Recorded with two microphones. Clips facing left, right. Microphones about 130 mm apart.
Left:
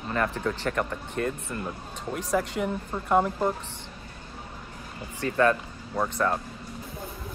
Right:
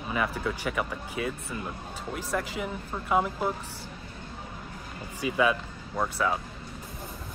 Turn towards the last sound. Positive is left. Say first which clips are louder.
# left 2 dB
turn(degrees=0)  # may be behind; listen again after turning